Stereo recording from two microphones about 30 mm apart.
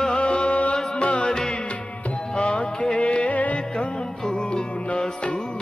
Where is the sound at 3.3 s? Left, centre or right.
Left.